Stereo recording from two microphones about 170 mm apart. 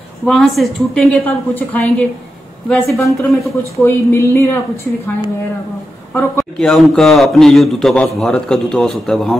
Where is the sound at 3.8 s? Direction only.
15° left (ahead or behind).